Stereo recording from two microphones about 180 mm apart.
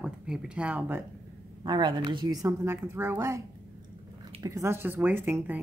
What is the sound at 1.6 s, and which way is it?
Speech, 25° right (ahead or behind).